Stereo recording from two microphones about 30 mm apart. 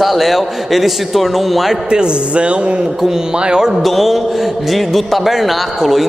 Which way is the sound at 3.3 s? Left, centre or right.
Right.